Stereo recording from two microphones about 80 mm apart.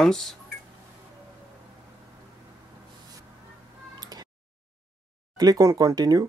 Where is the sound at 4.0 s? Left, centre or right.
Right.